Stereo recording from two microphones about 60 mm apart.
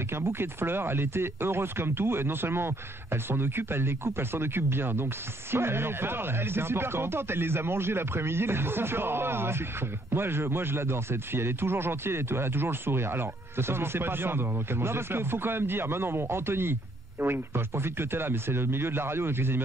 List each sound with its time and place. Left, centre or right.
0.1 s speech: right